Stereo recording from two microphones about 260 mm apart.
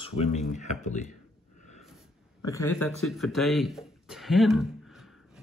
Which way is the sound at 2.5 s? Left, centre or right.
Centre.